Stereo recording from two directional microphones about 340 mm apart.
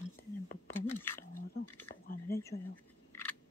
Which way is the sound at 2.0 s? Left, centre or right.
Left.